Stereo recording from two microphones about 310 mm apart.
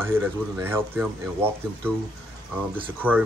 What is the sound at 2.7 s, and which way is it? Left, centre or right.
Speech, centre.